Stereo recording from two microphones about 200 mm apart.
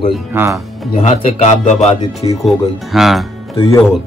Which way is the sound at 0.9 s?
30° left (ahead or behind).